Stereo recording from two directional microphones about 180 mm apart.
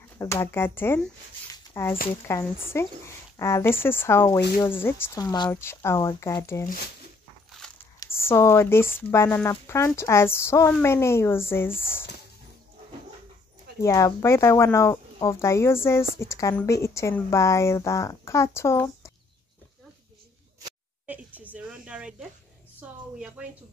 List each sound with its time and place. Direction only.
0.2 s speech: 15° left (ahead or behind)
1.5 s a sound: 15° left (ahead or behind)
2.2 s speech: 15° left (ahead or behind)
8.0 s speech: 15° left (ahead or behind)
13.7 s speech: 15° left (ahead or behind)
21.1 s a sound: 10° right (ahead or behind)
22.8 s a woman's voice: 5° right (ahead or behind)